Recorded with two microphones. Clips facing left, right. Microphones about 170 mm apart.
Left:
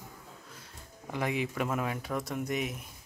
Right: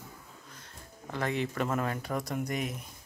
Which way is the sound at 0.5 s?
10° left (ahead or behind).